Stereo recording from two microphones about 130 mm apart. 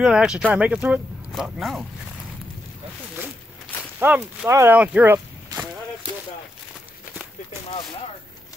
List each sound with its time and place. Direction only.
0.0 s speech: 5° right (ahead or behind)
4.0 s speech: 15° right (ahead or behind)
4.7 s a sound: 10° right (ahead or behind)